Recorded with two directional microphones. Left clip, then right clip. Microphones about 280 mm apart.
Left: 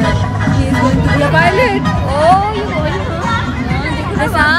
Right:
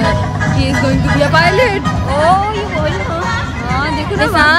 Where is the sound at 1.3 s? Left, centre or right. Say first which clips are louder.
Even; centre.